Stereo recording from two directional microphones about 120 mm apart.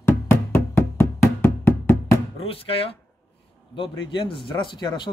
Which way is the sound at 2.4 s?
55° left (ahead or behind).